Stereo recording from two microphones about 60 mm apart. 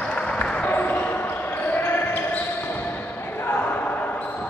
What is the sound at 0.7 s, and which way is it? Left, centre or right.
Basketball bounce, left.